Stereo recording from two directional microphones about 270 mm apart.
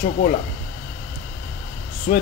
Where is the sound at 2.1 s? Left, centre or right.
Left.